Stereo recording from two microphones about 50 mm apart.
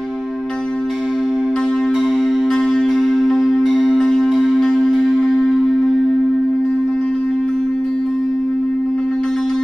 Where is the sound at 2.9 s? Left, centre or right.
Centre.